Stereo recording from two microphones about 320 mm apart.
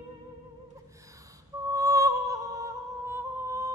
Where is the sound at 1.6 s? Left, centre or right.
Centre.